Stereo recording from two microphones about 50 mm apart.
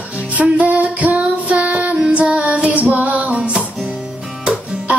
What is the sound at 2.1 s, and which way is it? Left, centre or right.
Female singing, right.